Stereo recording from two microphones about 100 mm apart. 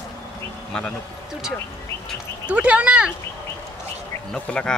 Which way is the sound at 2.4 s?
10° right (ahead or behind).